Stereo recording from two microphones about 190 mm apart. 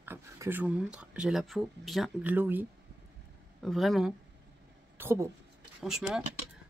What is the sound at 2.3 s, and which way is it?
Speech, 10° right (ahead or behind).